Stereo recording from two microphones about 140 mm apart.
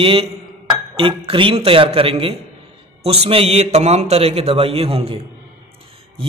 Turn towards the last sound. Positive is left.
turn(degrees=-45)  # may be behind; listen again after turning